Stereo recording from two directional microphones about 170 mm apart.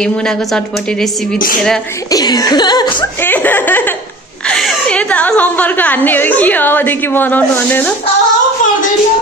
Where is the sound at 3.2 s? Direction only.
10° left (ahead or behind).